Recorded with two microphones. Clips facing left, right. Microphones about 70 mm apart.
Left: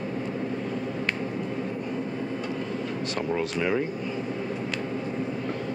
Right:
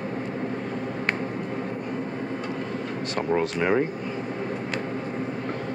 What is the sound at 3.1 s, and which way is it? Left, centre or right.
Speech, right.